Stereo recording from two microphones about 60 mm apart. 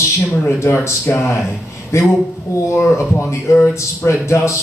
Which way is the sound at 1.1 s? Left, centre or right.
Left.